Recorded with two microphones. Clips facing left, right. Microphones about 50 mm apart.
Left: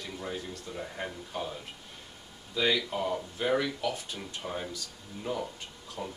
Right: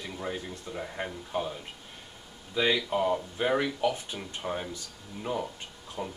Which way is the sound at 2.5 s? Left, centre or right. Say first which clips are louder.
Right 2 dB; centre.